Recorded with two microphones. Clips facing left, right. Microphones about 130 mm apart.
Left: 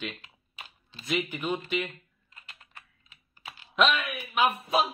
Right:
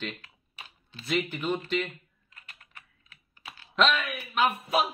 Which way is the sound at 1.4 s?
10° left (ahead or behind).